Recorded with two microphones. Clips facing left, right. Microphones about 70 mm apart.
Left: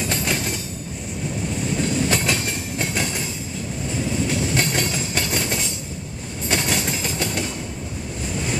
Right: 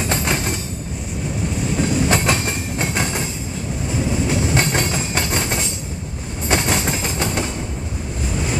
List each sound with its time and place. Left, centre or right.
0.0 s train: right
1.8 s train: centre